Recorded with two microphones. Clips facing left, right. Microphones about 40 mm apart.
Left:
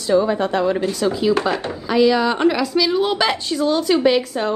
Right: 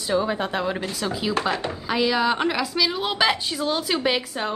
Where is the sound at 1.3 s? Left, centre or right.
Left.